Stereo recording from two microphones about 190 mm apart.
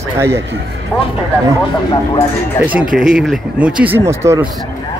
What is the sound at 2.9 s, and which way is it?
Speech, 5° right (ahead or behind).